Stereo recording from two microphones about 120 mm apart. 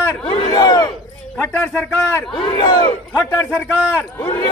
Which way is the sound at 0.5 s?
35° left (ahead or behind).